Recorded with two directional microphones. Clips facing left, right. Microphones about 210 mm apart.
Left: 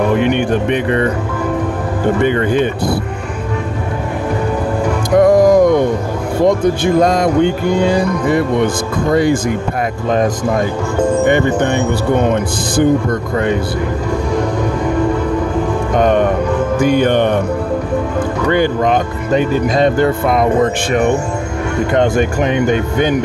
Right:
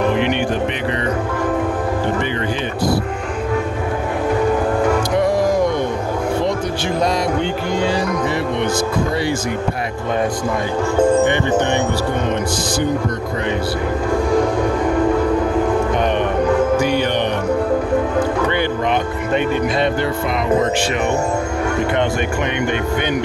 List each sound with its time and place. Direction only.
2.2 s speech: 50° left (ahead or behind)
5.2 s music: 45° left (ahead or behind)
6.4 s speech: 50° left (ahead or behind)
16.0 s music: 45° left (ahead or behind)
18.5 s speech: 45° left (ahead or behind)
21.9 s speech: 45° left (ahead or behind)